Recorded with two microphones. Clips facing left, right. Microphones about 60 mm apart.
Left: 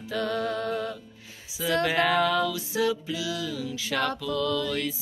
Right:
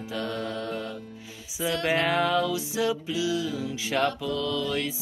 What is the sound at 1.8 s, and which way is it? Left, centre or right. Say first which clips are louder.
Mantra: even; right.